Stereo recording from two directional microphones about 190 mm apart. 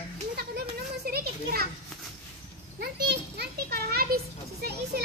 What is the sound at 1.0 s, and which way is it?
Children playing, 50° right (ahead or behind).